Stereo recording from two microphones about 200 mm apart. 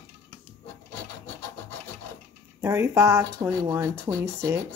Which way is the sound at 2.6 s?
15° right (ahead or behind).